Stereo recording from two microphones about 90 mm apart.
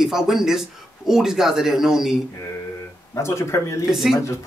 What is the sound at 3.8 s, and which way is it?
Speech, 5° right (ahead or behind).